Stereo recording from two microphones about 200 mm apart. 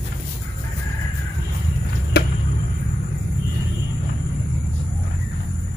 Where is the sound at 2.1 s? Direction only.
55° left (ahead or behind).